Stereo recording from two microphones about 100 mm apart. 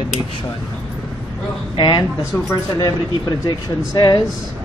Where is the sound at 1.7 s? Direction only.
50° left (ahead or behind).